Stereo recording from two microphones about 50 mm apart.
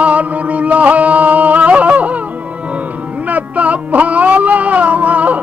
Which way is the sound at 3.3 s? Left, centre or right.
Right.